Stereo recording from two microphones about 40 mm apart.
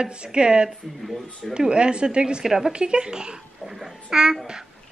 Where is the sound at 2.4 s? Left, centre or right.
Centre.